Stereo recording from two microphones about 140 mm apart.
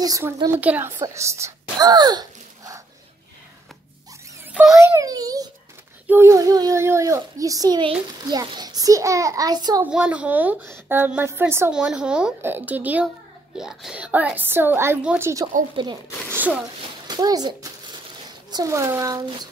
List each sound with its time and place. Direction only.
0.6 s a woman's voice: 15° right (ahead or behind)
1.0 s gasp: 20° right (ahead or behind)
4.5 s a sound: 10° right (ahead or behind)
4.7 s a child's voice: 20° right (ahead or behind)
9.8 s a woman's voice: 10° right (ahead or behind)
11.7 s a woman's voice: 5° right (ahead or behind)
15.7 s speech: 35° right (ahead or behind)
16.3 s speech: 15° right (ahead or behind)
17.1 s a child's voice: 30° right (ahead or behind)